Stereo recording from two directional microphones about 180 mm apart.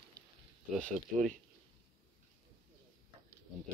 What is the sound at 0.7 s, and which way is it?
Speech, 5° left (ahead or behind).